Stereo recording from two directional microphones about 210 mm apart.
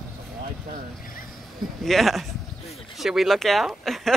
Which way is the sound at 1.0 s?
40° left (ahead or behind).